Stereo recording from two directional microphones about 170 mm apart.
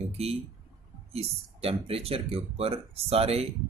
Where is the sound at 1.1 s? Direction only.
35° right (ahead or behind).